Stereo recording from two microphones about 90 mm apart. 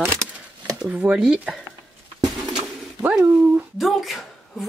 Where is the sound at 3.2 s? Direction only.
25° right (ahead or behind).